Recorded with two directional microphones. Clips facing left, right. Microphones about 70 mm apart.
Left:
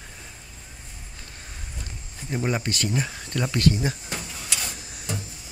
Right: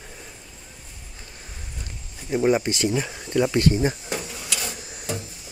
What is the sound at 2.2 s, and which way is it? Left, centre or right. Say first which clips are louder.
Speech: right 6 dB; centre.